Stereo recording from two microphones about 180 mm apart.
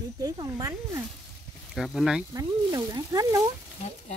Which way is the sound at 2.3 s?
20° right (ahead or behind).